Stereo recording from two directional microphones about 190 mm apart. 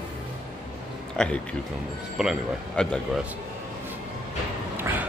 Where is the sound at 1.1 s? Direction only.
5° left (ahead or behind).